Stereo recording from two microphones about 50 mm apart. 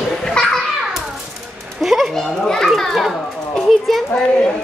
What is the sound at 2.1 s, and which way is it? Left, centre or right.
A child's voice, centre.